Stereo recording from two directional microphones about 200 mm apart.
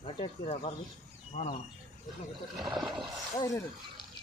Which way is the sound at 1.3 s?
40° left (ahead or behind).